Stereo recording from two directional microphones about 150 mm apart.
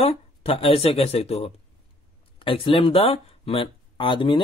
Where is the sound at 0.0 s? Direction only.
40° left (ahead or behind).